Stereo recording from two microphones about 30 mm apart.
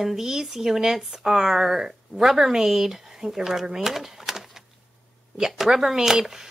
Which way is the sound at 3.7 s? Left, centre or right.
Centre.